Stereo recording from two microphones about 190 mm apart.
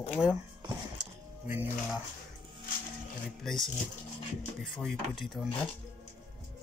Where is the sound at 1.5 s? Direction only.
10° right (ahead or behind).